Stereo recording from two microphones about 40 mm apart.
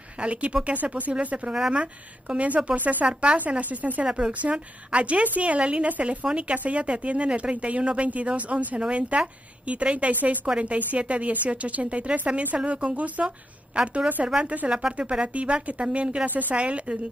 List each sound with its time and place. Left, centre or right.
0.2 s speech: right
4.0 s speech: right
4.3 s speech: right
5.6 s speech: right
15.1 s speech: right
16.3 s speech: right
16.5 s speech: right